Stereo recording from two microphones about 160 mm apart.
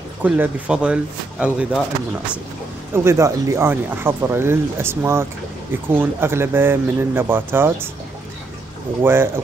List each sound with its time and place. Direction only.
0.2 s speech: 10° right (ahead or behind)
2.9 s speech: 15° right (ahead or behind)
9.0 s speech: 15° right (ahead or behind)